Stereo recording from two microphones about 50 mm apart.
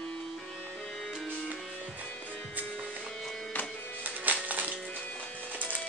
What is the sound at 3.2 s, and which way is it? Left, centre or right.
Music, centre.